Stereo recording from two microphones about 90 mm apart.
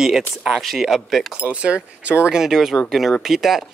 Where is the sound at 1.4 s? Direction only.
15° right (ahead or behind).